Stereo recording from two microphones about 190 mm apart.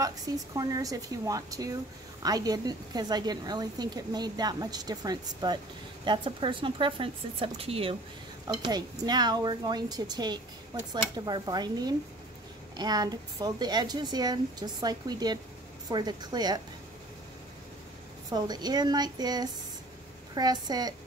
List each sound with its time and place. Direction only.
0.6 s a woman's voice: 20° right (ahead or behind)
18.3 s a woman's voice: 20° right (ahead or behind)